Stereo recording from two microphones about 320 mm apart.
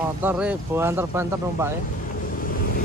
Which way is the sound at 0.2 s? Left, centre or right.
Centre.